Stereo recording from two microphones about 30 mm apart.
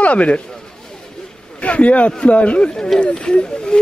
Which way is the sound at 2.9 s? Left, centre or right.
Left.